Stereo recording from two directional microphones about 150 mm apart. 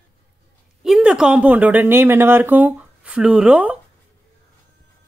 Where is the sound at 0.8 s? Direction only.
5° right (ahead or behind).